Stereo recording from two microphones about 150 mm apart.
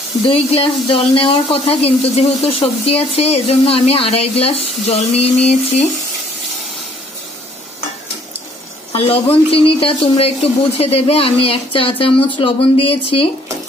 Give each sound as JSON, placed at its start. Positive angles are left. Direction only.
{"t": 0.3, "sound": "speech", "side_deg": 40}
{"t": 8.9, "sound": "speech", "side_deg": 40}